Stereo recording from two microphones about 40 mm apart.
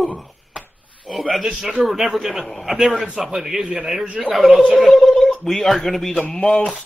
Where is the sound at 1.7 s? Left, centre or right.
Centre.